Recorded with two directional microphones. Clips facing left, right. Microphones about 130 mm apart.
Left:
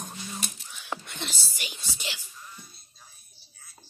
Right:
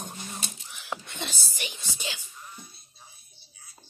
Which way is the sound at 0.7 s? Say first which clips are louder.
Right 1 dB; 5° right (ahead or behind).